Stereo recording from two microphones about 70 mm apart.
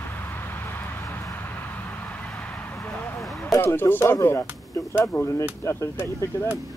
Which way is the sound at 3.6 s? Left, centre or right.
Left.